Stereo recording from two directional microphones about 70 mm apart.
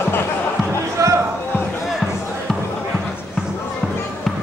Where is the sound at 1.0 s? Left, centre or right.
Right.